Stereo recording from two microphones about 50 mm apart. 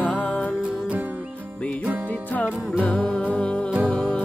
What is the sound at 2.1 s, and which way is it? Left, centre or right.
Music, left.